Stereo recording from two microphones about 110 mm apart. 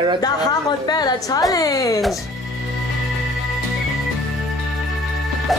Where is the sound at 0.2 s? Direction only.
35° left (ahead or behind).